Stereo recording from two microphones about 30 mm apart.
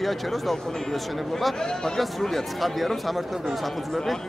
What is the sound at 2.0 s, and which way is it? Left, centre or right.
Speech, centre.